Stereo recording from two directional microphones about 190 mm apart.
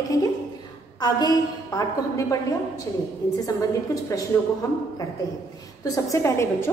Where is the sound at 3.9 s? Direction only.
20° left (ahead or behind).